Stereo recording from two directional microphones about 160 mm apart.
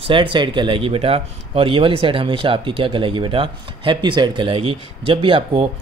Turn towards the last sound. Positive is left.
turn(degrees=-35)  # may be behind; listen again after turning